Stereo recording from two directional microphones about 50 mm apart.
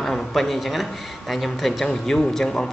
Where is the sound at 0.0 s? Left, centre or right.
Centre.